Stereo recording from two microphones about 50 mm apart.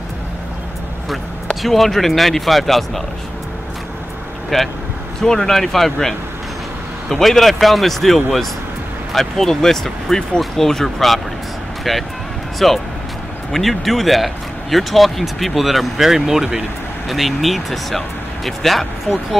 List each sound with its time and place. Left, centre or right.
1.6 s speech: centre
4.5 s speech: centre